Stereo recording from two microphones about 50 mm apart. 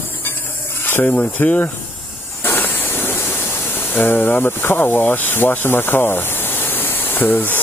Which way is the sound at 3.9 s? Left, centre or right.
Left.